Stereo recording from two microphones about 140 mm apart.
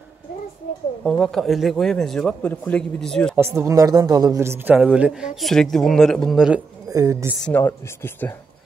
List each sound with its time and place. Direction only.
1.0 s a man's voice: 5° left (ahead or behind)
3.3 s a man's voice: 20° right (ahead or behind)
6.9 s a woman's voice: 25° right (ahead or behind)
7.4 s speech: 15° left (ahead or behind)